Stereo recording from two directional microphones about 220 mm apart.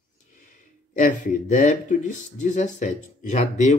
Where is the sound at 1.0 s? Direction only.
35° left (ahead or behind).